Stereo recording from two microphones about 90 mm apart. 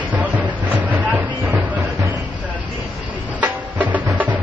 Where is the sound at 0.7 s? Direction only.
20° right (ahead or behind).